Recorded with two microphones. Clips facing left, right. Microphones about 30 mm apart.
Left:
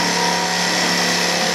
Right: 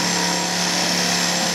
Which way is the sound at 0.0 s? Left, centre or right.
Left.